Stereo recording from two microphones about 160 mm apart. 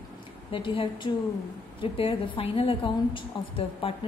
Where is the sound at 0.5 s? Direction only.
30° left (ahead or behind).